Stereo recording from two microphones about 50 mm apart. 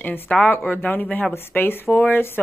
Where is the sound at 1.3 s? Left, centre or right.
Left.